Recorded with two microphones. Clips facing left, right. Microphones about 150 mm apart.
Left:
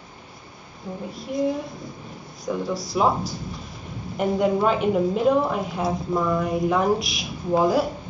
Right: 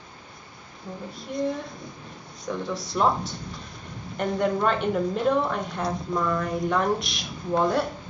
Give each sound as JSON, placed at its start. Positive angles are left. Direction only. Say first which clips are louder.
{"t": 1.1, "sound": "a woman's voice", "louder": "left 4 dB", "side_deg": 0}